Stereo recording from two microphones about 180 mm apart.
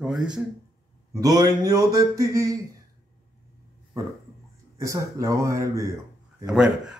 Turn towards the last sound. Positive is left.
turn(degrees=-5)  # may be behind; listen again after turning